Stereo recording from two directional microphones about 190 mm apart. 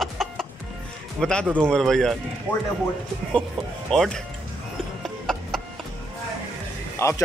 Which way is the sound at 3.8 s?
Centre (ahead or behind).